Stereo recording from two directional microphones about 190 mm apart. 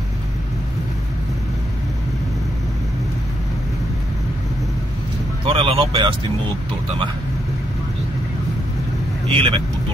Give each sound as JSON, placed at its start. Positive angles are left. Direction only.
{"t": 5.4, "sound": "speech", "side_deg": -30}
{"t": 9.3, "sound": "speech", "side_deg": -30}